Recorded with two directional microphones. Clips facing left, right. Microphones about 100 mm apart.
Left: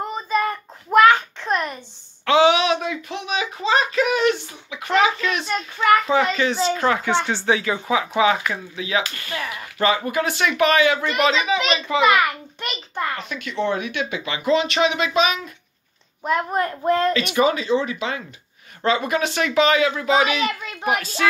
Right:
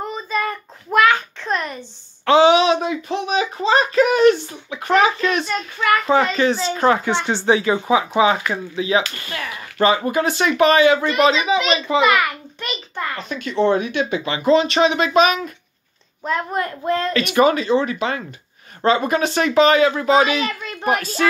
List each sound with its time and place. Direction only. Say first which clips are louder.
0.1 s a sound: left 3 dB; 15° left (ahead or behind)
2.2 s a sound: right 3 dB; 30° right (ahead or behind)
3.3 s a sound: right 3 dB; 40° right (ahead or behind)
6.0 s speech: right 3 dB; 40° right (ahead or behind); by 12.0 s 20° right (ahead or behind)
13.2 s speech: right 6 dB; 35° right (ahead or behind)
16.2 s a woman's voice: left 1 dB; 10° left (ahead or behind)
16.5 s speech: left 2 dB; 25° left (ahead or behind)
17.1 s speech: right 3 dB; 55° right (ahead or behind)
18.8 s speech: right 3 dB; 40° right (ahead or behind)